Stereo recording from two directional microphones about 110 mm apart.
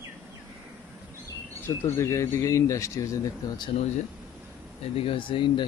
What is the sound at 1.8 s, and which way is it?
Speech, 25° left (ahead or behind).